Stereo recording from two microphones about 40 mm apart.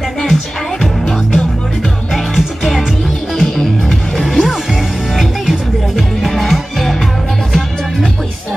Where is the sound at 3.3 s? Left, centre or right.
Centre.